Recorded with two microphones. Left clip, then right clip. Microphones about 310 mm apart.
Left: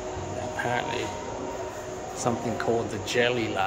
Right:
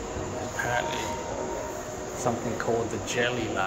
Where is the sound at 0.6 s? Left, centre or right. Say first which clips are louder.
Even; centre.